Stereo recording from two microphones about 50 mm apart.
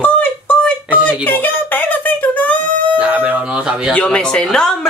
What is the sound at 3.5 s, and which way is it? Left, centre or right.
Speech, centre.